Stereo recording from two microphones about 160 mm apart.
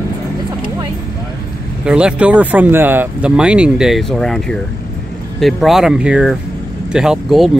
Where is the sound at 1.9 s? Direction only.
5° right (ahead or behind).